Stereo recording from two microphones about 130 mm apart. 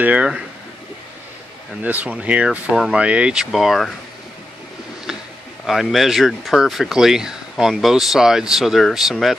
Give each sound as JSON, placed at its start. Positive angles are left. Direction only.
{"t": 0.0, "sound": "speech", "side_deg": -10}
{"t": 1.8, "sound": "speech", "side_deg": -10}
{"t": 5.7, "sound": "speech", "side_deg": 0}